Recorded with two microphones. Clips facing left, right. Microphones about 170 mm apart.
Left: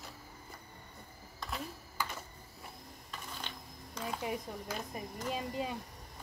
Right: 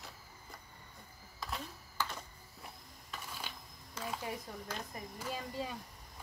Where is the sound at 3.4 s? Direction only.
5° right (ahead or behind).